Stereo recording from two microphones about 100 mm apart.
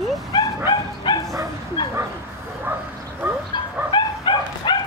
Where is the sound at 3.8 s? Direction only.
50° left (ahead or behind).